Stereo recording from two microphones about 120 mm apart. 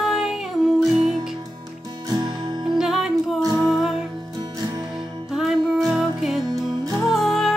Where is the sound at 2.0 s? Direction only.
35° right (ahead or behind).